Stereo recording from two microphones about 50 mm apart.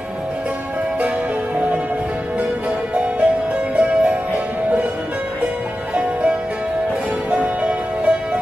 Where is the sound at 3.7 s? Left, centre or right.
Right.